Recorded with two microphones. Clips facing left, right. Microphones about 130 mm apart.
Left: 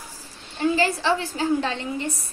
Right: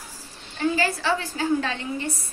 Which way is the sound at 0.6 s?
25° left (ahead or behind).